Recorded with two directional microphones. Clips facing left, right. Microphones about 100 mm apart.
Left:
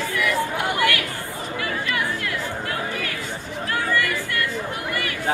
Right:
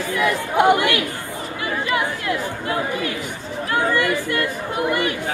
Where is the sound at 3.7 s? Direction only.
25° right (ahead or behind).